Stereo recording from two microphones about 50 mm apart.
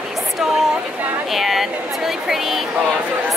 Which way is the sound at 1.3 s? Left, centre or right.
Centre.